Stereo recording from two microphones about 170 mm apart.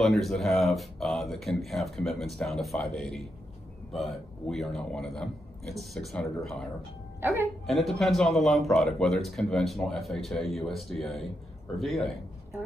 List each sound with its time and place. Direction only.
0.0 s a man's voice: centre (ahead or behind)
7.2 s speech: 15° right (ahead or behind)
7.6 s a man's voice: centre (ahead or behind)